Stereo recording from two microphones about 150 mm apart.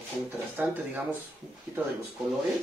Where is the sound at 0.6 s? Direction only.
10° right (ahead or behind).